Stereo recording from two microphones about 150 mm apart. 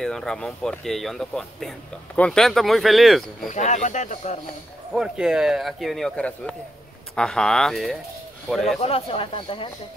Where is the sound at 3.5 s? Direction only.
50° left (ahead or behind).